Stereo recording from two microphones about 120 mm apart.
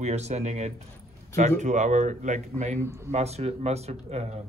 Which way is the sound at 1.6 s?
85° right.